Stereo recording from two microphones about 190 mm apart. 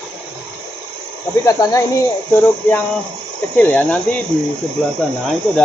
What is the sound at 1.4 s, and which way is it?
Speech, 15° left (ahead or behind).